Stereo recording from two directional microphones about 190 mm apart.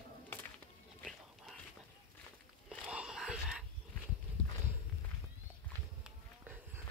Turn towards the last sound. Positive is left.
turn(degrees=-10)  # may be behind; listen again after turning